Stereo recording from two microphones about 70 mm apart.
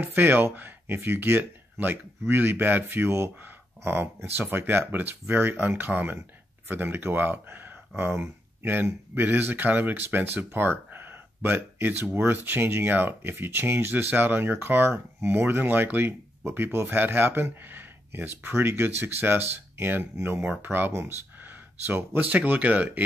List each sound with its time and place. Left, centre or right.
0.0 s speech: right